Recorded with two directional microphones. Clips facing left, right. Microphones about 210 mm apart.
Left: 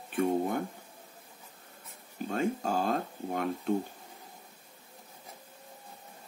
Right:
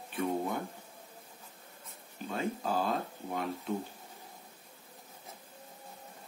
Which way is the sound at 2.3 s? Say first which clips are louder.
Left 3 dB; 50° left (ahead or behind).